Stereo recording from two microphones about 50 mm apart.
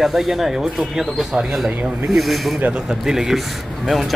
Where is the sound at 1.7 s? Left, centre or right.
Right.